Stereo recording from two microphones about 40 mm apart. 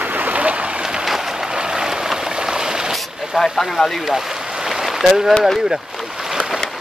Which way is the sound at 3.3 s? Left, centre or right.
Centre.